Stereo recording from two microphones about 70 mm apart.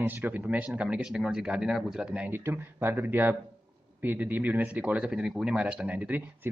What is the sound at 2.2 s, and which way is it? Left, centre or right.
Speech, right.